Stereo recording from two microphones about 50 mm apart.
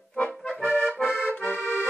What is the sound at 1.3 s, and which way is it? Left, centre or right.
Accordion, left.